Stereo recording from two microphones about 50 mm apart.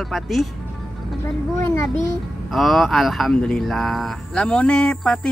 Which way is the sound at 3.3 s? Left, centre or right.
Centre.